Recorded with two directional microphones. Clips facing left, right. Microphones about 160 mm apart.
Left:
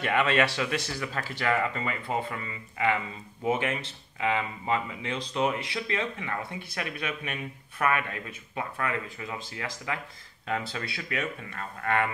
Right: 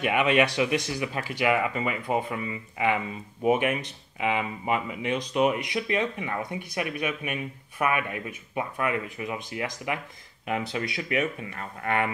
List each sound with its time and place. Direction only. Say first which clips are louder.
0.0 s speech: right 2 dB; 15° right (ahead or behind)